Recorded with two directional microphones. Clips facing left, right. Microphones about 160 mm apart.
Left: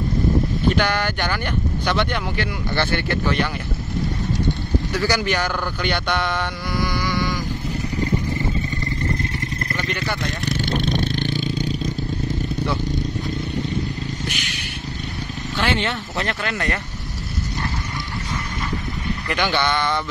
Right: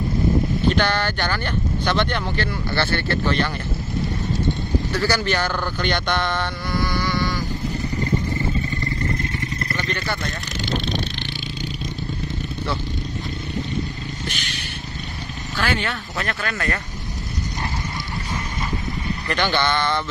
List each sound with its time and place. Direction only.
0.7 s speech: 10° left (ahead or behind)
4.9 s speech: 15° left (ahead or behind)
9.8 s speech: 10° left (ahead or behind)
10.4 s a sound: 55° left (ahead or behind)
14.2 s vehicle: 10° left (ahead or behind)
15.5 s speech: 20° left (ahead or behind)
19.2 s speech: 10° left (ahead or behind)